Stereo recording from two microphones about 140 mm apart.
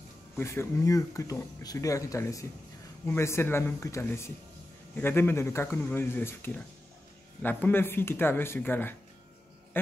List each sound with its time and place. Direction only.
0.4 s speech: 20° left (ahead or behind)